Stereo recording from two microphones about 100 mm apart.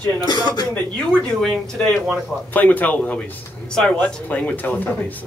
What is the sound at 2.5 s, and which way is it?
A man's voice, 15° left (ahead or behind).